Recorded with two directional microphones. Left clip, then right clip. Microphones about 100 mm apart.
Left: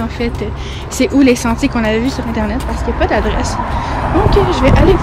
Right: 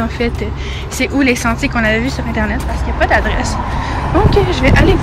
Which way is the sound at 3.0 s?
55° left (ahead or behind).